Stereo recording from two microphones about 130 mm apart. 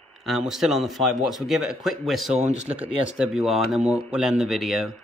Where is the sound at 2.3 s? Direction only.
60° right (ahead or behind).